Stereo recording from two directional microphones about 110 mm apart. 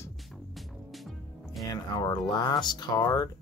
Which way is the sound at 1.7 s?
40° left (ahead or behind).